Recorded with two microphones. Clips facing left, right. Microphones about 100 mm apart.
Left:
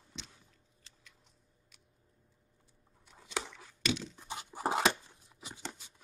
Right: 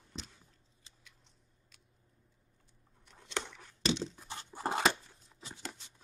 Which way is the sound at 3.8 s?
30° right (ahead or behind).